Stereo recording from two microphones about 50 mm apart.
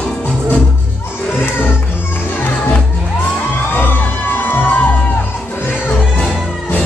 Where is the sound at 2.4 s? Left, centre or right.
Left.